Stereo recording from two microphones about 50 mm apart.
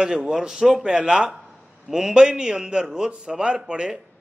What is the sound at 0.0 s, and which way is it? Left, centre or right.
A man's voice, centre.